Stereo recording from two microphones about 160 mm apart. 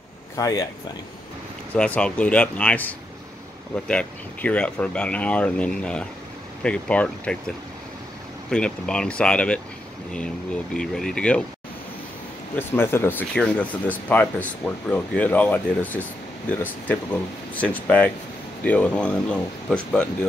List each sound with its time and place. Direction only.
0.4 s speech: 20° left (ahead or behind)
1.8 s speech: 5° left (ahead or behind)
12.5 s speech: 15° left (ahead or behind)